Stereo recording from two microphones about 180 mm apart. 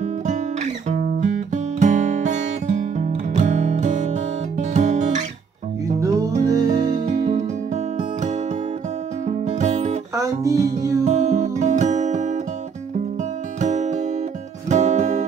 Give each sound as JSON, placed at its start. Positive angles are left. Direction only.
{"t": 0.8, "sound": "guitar", "side_deg": -40}
{"t": 5.9, "sound": "music", "side_deg": -20}
{"t": 7.1, "sound": "music", "side_deg": -40}
{"t": 10.1, "sound": "music", "side_deg": -20}
{"t": 11.1, "sound": "music", "side_deg": -40}
{"t": 13.6, "sound": "music", "side_deg": -40}